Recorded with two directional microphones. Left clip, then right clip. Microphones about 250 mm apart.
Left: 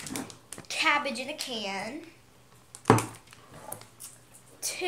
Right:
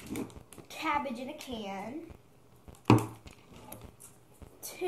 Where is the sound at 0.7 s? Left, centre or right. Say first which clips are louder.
Left 7 dB; centre.